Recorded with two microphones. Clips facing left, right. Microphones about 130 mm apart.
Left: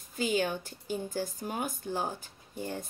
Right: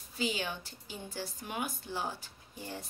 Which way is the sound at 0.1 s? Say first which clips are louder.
Left 6 dB; 45° left (ahead or behind).